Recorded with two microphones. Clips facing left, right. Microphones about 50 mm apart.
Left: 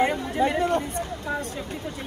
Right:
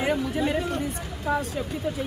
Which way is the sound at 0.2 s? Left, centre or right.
Left.